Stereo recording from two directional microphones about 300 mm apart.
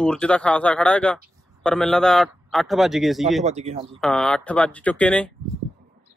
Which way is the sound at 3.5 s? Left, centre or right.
Right.